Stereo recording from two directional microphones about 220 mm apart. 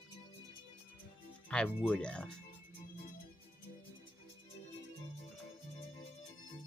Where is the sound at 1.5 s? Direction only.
5° left (ahead or behind).